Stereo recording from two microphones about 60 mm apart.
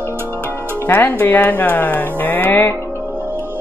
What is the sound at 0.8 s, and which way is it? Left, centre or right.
Speech, left.